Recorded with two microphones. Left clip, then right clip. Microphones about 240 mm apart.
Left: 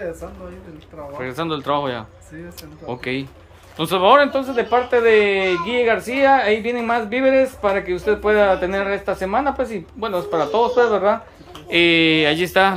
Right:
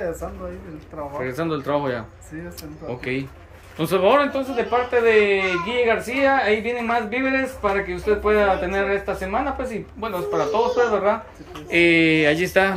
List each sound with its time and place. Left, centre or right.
1.1 s speech: centre; by 11.1 s left
11.7 s speech: centre